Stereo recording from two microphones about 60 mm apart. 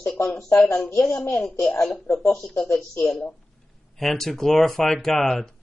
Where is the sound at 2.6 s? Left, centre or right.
Left.